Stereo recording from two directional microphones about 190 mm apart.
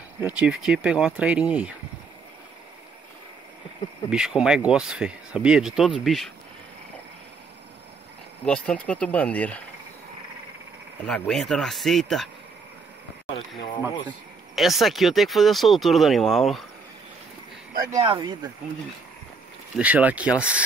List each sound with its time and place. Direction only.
0.2 s speech: 5° right (ahead or behind)
4.1 s speech: 5° right (ahead or behind)
8.5 s speech: 5° left (ahead or behind)
11.1 s speech: 5° left (ahead or behind)
14.0 s speech: centre (ahead or behind)
17.9 s speech: 25° right (ahead or behind)
19.7 s speech: 10° right (ahead or behind)